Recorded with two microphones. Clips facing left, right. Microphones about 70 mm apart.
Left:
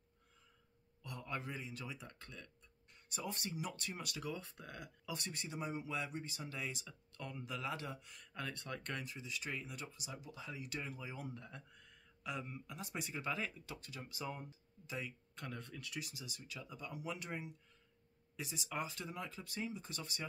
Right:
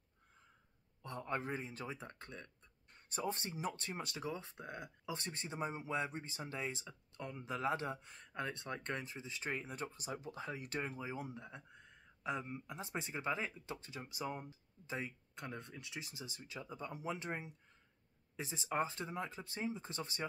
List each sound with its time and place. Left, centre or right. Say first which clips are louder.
1.0 s speech: right 4 dB; right